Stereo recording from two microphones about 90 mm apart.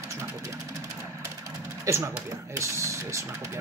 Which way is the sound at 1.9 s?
35° right (ahead or behind).